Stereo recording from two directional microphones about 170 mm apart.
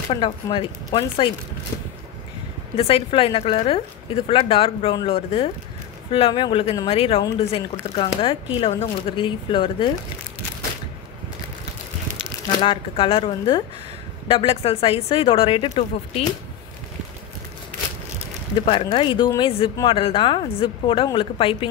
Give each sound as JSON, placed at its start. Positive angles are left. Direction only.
{"t": 0.1, "sound": "speech", "side_deg": 30}
{"t": 2.7, "sound": "speech", "side_deg": 35}
{"t": 12.6, "sound": "speech", "side_deg": 30}
{"t": 18.7, "sound": "speech", "side_deg": 35}